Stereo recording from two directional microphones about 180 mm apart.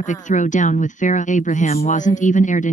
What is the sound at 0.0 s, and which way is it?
Speech, 45° left (ahead or behind).